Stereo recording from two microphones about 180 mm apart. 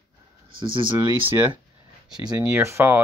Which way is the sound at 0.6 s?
30° right (ahead or behind).